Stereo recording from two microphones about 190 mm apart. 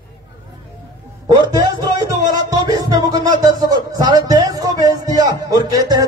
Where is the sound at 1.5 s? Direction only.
20° right (ahead or behind).